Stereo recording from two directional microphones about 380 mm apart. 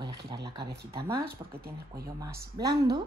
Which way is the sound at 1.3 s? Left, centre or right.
Right.